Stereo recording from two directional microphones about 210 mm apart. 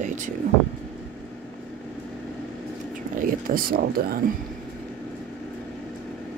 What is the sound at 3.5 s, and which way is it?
Speech, 45° right (ahead or behind).